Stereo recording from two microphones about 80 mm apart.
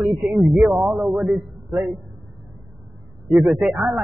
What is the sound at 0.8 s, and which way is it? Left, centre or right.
Speech, centre.